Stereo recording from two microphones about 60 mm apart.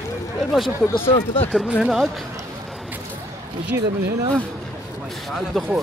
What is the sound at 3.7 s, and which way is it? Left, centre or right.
Speech, right.